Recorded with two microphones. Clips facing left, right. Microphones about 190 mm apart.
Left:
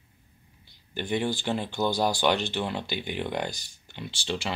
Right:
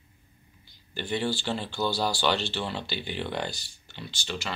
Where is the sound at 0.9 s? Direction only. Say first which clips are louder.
Left 1 dB; 15° left (ahead or behind).